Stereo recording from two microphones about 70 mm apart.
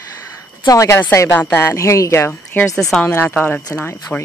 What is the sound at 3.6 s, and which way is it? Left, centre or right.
Speech, left.